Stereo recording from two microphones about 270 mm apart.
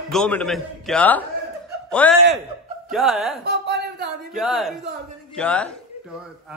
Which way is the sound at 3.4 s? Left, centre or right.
Right.